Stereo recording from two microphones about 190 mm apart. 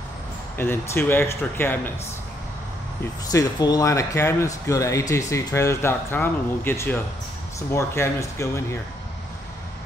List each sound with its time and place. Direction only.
0.6 s speech: 10° left (ahead or behind)
3.3 s speech: 20° left (ahead or behind)